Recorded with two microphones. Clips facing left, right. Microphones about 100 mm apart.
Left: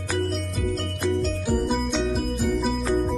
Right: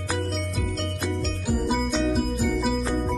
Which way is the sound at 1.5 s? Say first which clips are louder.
Right 1 dB; centre (ahead or behind).